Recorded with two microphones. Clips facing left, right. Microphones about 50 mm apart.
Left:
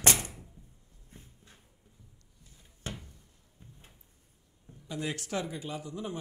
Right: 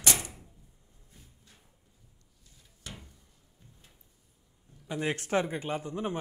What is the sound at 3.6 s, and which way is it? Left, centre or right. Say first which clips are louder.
Drawer open or close: left 4 dB; left.